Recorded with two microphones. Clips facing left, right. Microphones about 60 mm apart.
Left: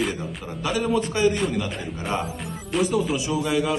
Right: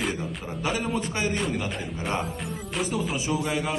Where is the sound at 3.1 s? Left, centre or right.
Right.